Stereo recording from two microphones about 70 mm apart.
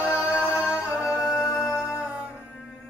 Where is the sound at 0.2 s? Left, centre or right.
Centre.